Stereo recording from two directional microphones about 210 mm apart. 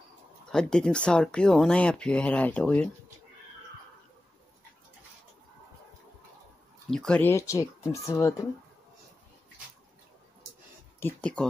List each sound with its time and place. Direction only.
0.5 s speech: 5° left (ahead or behind)
6.9 s speech: 5° left (ahead or behind)
11.0 s speech: 10° left (ahead or behind)